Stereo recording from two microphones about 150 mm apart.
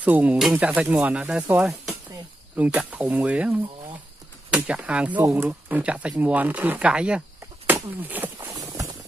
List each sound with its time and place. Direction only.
0.0 s speech: 10° right (ahead or behind)
8.5 s clip-clop: 20° right (ahead or behind)